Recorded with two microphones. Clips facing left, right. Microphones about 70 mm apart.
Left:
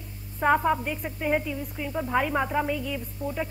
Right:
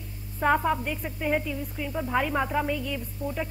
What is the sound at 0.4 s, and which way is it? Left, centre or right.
Speech, centre.